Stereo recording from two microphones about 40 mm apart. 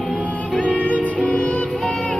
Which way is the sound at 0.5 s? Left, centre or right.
Left.